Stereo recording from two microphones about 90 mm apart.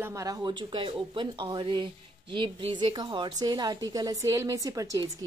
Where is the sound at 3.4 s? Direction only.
45° right (ahead or behind).